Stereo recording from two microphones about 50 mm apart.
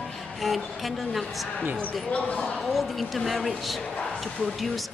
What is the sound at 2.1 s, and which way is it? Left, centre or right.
Speech, left.